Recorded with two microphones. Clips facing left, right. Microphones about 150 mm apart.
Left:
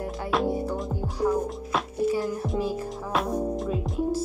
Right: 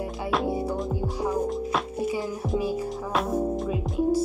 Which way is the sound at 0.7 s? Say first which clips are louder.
Right 1 dB; centre (ahead or behind).